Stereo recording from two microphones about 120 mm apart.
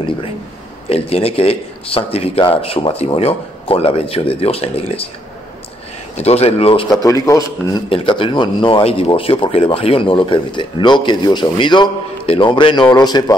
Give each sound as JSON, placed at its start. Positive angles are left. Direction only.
{"t": 0.8, "sound": "a man's voice", "side_deg": 55}
{"t": 6.1, "sound": "speech", "side_deg": 60}
{"t": 7.0, "sound": "a man's voice", "side_deg": 30}
{"t": 7.9, "sound": "a man's voice", "side_deg": 45}